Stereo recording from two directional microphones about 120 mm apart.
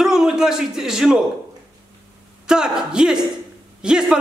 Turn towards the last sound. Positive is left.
turn(degrees=-5)  # may be behind; listen again after turning